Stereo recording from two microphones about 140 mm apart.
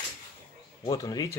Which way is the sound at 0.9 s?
25° left (ahead or behind).